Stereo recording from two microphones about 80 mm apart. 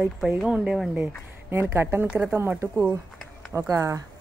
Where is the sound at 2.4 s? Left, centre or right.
Right.